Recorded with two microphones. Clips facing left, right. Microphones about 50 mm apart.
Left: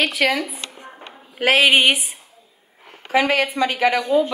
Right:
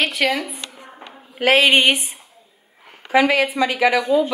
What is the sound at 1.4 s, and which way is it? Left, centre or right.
Speech, centre.